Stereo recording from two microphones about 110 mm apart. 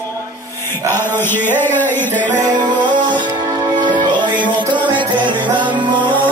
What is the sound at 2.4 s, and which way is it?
Music, 45° right (ahead or behind).